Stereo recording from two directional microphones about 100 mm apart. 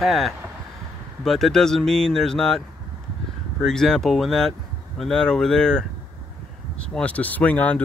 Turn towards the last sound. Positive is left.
turn(degrees=15)  # may be behind; listen again after turning